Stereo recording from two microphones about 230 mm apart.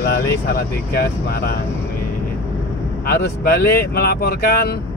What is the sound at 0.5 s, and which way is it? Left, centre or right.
Speech, left.